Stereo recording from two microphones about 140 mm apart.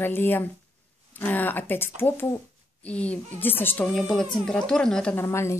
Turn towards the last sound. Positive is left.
turn(degrees=20)  # may be behind; listen again after turning